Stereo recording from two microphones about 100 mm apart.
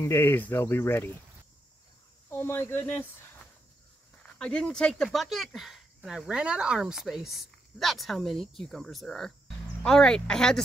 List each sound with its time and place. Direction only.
0.0 s speech: 25° left (ahead or behind)
2.2 s speech: 25° left (ahead or behind); by 10.6 s 5° left (ahead or behind)